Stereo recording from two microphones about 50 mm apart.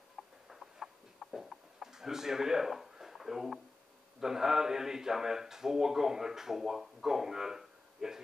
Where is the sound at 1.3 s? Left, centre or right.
Centre.